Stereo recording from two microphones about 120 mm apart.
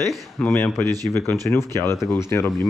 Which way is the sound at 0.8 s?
30° right (ahead or behind).